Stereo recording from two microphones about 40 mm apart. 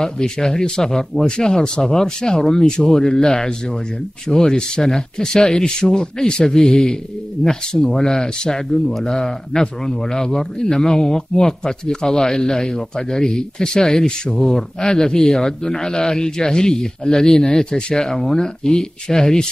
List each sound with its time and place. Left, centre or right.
0.0 s a man's voice: centre
17.9 s a man's voice: centre